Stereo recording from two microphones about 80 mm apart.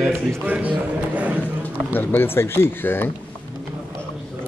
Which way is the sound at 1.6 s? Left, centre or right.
Left.